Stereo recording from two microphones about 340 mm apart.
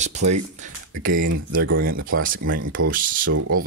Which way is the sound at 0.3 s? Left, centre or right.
Right.